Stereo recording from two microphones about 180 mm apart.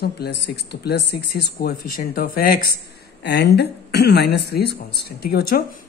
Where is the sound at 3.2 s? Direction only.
75° left (ahead or behind).